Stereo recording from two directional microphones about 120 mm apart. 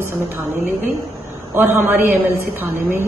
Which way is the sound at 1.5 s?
15° right (ahead or behind).